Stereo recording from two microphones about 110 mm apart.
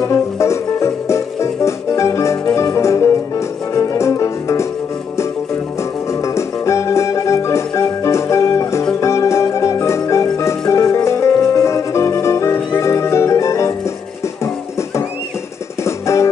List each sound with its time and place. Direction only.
0.0 s music: 25° left (ahead or behind)
6.2 s music: 25° left (ahead or behind)
15.8 s music: 25° left (ahead or behind)